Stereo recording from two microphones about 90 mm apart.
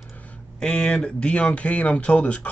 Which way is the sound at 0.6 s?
10° left (ahead or behind).